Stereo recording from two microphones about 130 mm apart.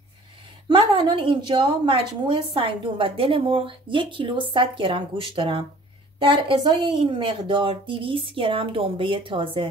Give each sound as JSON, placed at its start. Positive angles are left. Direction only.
{"t": 0.7, "sound": "a woman's voice", "side_deg": -40}